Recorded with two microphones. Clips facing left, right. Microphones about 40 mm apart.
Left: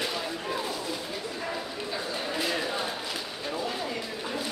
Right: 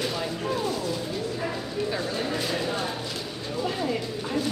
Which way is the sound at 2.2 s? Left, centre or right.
Centre.